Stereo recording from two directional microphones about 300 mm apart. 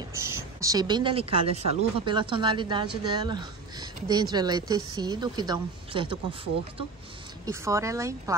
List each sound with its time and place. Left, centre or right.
0.1 s speech: centre
7.4 s speech: centre